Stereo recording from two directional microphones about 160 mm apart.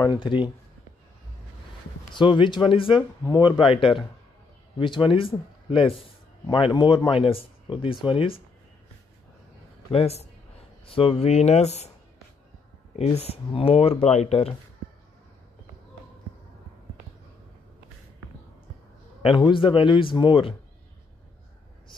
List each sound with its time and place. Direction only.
0.0 s speech: 30° left (ahead or behind)
2.1 s speech: 30° left (ahead or behind)
9.9 s speech: 40° left (ahead or behind)
12.9 s speech: 40° left (ahead or behind)
19.2 s speech: 30° left (ahead or behind)